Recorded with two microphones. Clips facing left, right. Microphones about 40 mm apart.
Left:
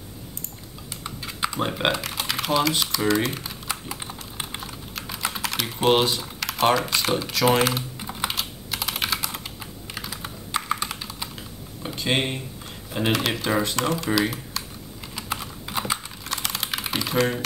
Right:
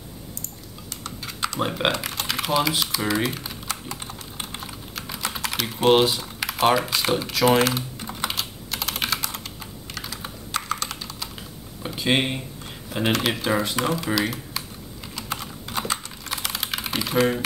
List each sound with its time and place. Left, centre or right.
1.0 s typing: centre
1.6 s speech: centre
3.6 s typing: centre
11.8 s speech: centre
15.1 s typing: centre